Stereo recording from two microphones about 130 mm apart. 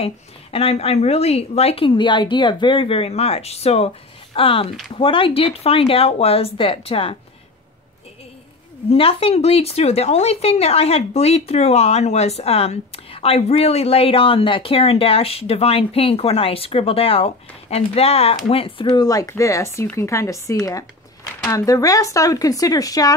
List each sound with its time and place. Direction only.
0.0 s speech: 50° left (ahead or behind)
8.9 s speech: 50° left (ahead or behind)
18.9 s speech: 30° left (ahead or behind)